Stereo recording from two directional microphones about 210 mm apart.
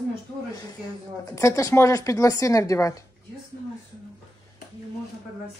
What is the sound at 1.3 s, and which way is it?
Speech, 15° left (ahead or behind).